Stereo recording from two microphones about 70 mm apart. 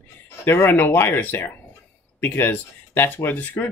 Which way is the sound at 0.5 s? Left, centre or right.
Left.